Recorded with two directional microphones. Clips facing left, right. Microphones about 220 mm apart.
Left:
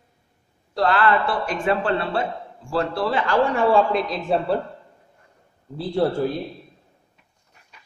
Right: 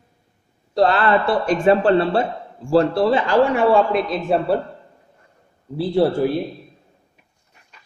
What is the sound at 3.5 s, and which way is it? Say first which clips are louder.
Speech: right 2 dB; centre (ahead or behind).